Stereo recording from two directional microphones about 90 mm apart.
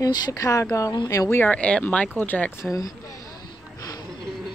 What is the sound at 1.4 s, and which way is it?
Speech, 15° left (ahead or behind).